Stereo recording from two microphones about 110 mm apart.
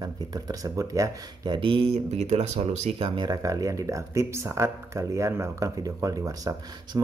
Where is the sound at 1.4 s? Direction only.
45° right (ahead or behind); by 3.1 s 85° right.